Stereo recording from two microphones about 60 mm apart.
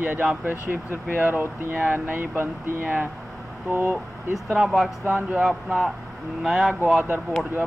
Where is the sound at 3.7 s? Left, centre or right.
Right.